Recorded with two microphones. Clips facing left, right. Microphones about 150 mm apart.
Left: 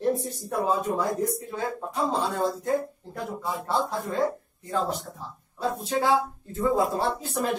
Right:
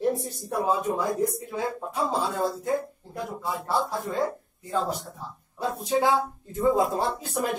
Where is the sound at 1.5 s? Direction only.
10° right (ahead or behind).